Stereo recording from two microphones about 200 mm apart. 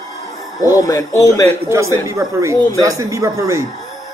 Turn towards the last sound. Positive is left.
turn(degrees=-15)  # may be behind; listen again after turning